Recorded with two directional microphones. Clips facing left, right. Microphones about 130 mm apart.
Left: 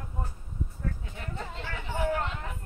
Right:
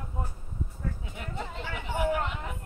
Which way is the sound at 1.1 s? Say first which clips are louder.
Right 1 dB; 15° right (ahead or behind).